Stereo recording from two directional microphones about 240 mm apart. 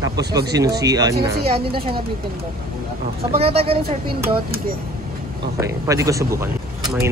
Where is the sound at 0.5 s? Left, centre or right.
Centre.